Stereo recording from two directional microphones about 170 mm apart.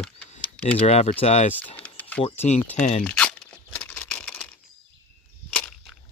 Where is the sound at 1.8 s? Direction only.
10° left (ahead or behind).